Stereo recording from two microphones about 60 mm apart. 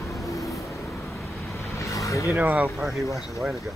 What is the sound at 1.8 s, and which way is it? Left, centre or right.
Vehicle, left.